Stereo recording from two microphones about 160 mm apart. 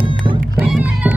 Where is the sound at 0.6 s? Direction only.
10° right (ahead or behind).